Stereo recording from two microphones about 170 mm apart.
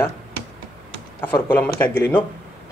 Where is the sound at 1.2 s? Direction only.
10° left (ahead or behind).